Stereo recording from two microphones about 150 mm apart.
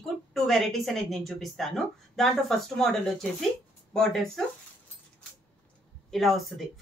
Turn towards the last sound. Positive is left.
turn(degrees=0)  # may be behind; listen again after turning